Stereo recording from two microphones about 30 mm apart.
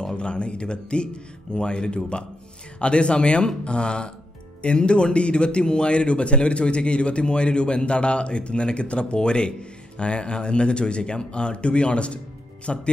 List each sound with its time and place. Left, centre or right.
0.0 s speech: left